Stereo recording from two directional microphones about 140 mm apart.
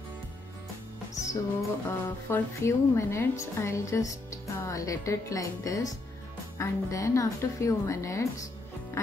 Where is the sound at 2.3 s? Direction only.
20° left (ahead or behind).